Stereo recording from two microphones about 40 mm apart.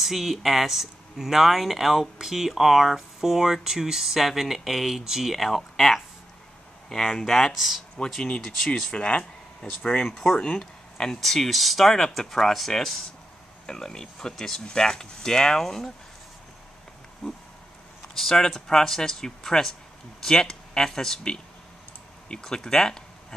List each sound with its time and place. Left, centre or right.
0.0 s speech: centre
7.5 s speech: centre
8.5 s speech: centre
8.9 s speech: left
10.0 s speech: centre
17.2 s speech: centre
18.7 s speech: centre
22.4 s speech: centre